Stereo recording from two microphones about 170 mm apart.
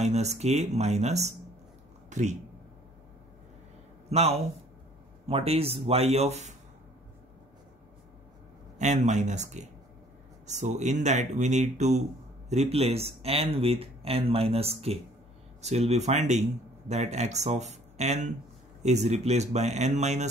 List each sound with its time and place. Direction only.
0.0 s speech: 40° right (ahead or behind)
2.0 s a sound: 45° right (ahead or behind)
4.1 s speech: 40° right (ahead or behind)
8.7 s speech: 45° right (ahead or behind)